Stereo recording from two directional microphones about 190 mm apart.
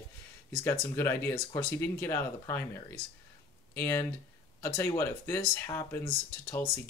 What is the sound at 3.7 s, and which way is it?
Speech, 15° left (ahead or behind).